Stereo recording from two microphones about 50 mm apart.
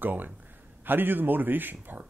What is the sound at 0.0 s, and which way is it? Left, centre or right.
Speech, right.